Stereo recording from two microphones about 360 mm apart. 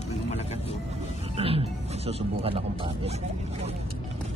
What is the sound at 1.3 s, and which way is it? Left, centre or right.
Speech, centre.